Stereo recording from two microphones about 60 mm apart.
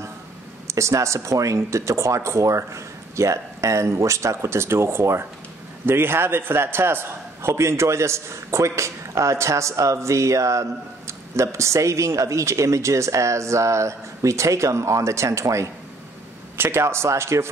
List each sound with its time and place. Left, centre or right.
0.7 s a man's voice: right
16.5 s speech: right